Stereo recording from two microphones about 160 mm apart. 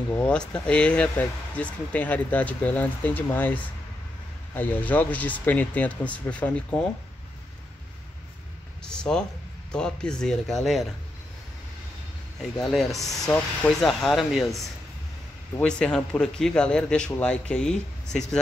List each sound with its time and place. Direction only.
0.1 s speech: 10° left (ahead or behind)
8.9 s speech: 5° left (ahead or behind)
12.4 s speech: centre (ahead or behind)
12.9 s speech: 20° left (ahead or behind)
13.3 s speech: 5° left (ahead or behind)